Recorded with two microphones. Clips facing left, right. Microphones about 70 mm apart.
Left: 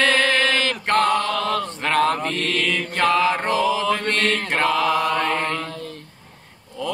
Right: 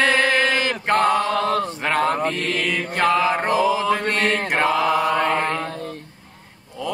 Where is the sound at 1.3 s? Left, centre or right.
Right.